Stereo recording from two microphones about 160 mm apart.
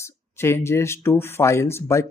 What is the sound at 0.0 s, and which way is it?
Speech, 15° left (ahead or behind).